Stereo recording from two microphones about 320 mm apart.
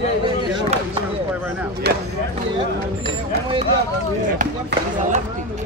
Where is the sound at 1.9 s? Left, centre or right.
Right.